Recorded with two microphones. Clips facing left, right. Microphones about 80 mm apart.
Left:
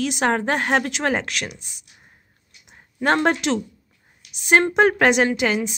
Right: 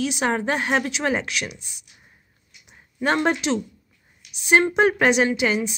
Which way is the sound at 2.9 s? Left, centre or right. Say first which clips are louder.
Left 2 dB; left.